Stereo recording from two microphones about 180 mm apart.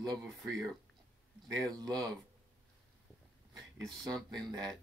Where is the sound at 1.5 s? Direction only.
20° right (ahead or behind).